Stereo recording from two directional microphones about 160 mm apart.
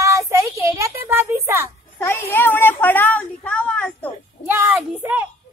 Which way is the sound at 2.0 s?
15° left (ahead or behind).